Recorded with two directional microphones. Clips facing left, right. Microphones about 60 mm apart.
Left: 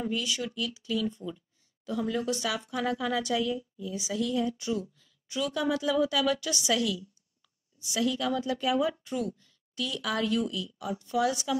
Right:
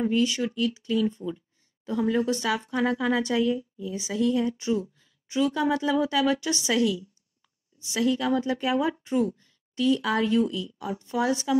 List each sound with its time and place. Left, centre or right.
0.0 s speech: right